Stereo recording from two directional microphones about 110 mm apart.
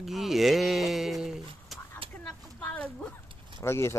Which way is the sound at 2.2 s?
10° left (ahead or behind).